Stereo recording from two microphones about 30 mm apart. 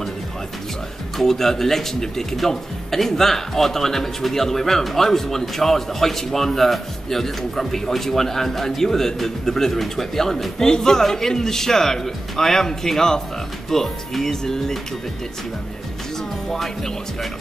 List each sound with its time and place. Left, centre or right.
1.1 s a man's voice: centre
16.4 s a man's voice: centre